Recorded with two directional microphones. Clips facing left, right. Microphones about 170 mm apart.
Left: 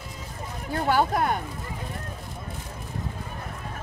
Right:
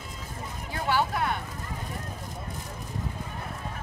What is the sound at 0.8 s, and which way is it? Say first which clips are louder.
Speech: left 4 dB; 45° left (ahead or behind).